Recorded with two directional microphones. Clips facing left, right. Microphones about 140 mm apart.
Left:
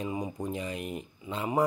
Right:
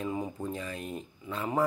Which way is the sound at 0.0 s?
15° left (ahead or behind).